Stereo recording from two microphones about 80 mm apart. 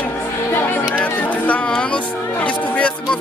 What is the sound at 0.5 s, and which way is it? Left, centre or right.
Speech, left.